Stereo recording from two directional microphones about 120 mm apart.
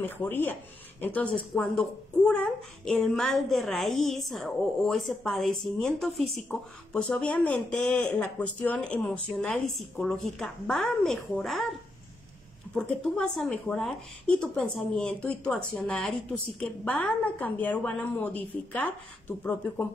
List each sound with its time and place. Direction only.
0.0 s a child's voice: 15° left (ahead or behind)
12.7 s speech: 5° left (ahead or behind)